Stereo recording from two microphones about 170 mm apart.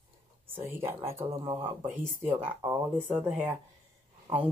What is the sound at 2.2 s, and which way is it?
Speech, 15° right (ahead or behind).